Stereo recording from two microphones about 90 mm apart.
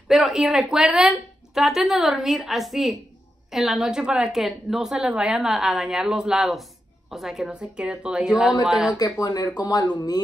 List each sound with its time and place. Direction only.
0.1 s a woman's voice: 5° right (ahead or behind)
8.9 s speech: 45° left (ahead or behind)